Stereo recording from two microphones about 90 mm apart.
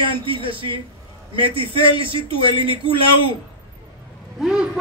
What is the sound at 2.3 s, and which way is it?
Speech, 70° left (ahead or behind).